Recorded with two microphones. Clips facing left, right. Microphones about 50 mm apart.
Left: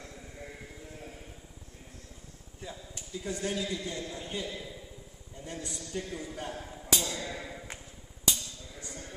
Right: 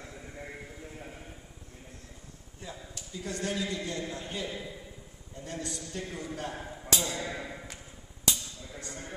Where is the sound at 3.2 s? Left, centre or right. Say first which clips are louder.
Right 1 dB; centre.